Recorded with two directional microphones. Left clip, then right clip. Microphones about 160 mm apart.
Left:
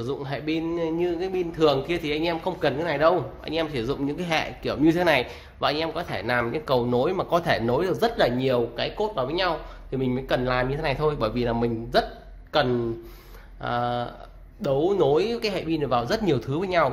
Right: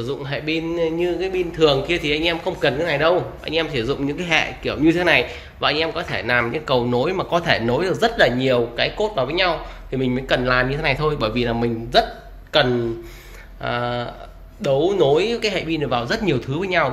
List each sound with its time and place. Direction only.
0.0 s speech: 25° left (ahead or behind)